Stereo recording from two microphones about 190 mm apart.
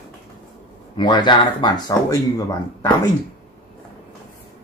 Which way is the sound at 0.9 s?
25° left (ahead or behind).